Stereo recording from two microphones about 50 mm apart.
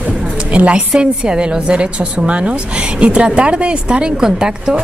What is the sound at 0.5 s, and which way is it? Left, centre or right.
A woman's voice, right.